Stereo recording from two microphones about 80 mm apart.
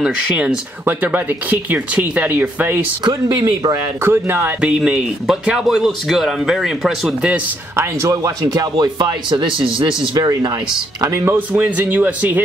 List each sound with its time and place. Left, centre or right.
0.8 s speech: right
3.1 s speech: right
4.0 s speech: right
4.6 s speech: centre
7.7 s speech: right
11.2 s speech: right